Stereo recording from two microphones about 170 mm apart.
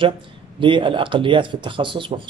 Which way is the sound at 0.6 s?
30° right (ahead or behind).